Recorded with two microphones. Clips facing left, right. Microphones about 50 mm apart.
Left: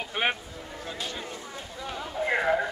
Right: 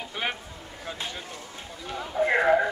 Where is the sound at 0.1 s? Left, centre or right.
Left.